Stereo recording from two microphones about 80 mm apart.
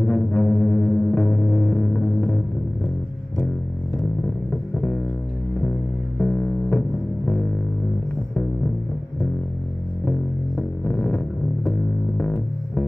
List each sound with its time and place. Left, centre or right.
0.0 s music: centre
4.7 s music: centre
6.1 s music: centre
10.0 s music: centre
12.2 s music: centre